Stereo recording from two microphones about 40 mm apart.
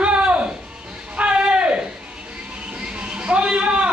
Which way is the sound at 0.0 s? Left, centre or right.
Right.